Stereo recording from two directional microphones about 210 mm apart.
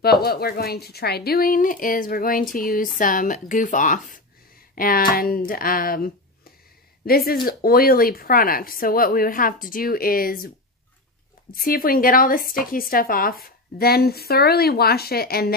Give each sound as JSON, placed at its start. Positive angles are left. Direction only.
{"t": 0.0, "sound": "speech", "side_deg": 50}
{"t": 11.5, "sound": "speech", "side_deg": 45}